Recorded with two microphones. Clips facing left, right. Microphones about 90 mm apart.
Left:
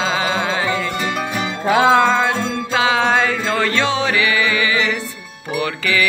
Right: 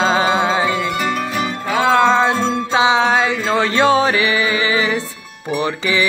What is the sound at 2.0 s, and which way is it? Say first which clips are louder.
Music: right 3 dB; 20° right (ahead or behind).